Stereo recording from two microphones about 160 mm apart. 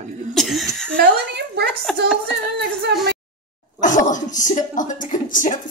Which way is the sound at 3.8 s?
50° left (ahead or behind).